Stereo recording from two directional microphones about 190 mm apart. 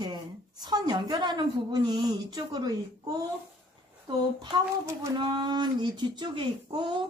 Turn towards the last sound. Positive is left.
turn(degrees=-25)  # may be behind; listen again after turning